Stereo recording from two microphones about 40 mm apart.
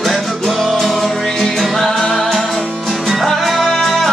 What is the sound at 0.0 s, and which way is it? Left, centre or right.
Music, centre.